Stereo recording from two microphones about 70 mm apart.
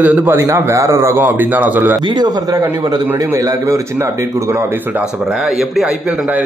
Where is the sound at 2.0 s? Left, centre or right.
Right.